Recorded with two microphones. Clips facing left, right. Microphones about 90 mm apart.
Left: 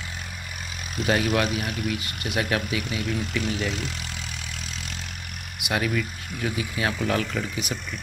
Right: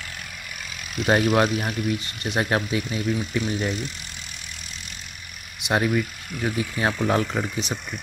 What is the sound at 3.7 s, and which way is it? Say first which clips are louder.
Speech: right 1 dB; 90° left.